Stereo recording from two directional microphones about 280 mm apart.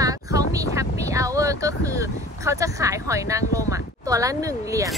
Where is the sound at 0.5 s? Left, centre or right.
Centre.